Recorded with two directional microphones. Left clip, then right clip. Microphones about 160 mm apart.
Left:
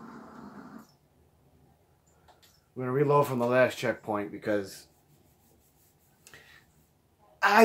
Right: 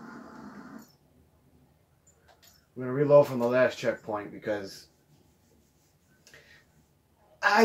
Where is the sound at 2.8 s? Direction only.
55° left (ahead or behind).